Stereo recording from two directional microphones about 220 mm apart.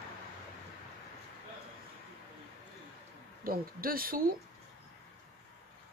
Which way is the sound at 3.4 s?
40° right (ahead or behind).